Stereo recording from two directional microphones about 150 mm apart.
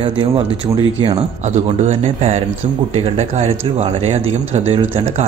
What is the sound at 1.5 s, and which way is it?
Speech, 50° right (ahead or behind).